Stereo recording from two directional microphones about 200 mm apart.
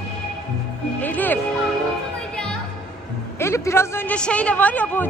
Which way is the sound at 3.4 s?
15° left (ahead or behind).